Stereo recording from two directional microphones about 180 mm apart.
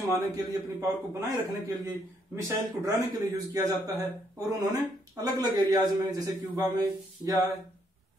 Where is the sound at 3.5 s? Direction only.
20° right (ahead or behind).